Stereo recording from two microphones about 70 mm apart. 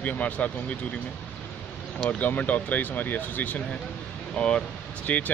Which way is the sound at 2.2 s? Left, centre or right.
Left.